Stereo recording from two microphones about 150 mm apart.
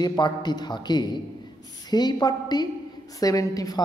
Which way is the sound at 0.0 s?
30° left (ahead or behind).